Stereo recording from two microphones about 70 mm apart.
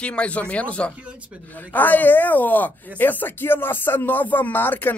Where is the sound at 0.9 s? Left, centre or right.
Centre.